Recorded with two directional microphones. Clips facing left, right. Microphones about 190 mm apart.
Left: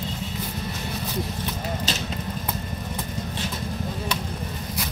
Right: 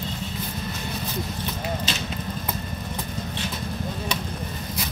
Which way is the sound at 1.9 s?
40° left (ahead or behind).